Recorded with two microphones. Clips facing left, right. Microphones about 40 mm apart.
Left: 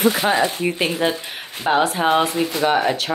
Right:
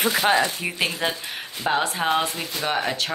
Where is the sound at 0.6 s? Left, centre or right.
Centre.